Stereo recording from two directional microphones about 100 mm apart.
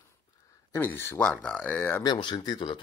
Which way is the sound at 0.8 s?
25° left (ahead or behind).